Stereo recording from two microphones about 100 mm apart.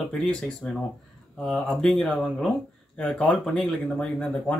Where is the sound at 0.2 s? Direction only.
10° left (ahead or behind).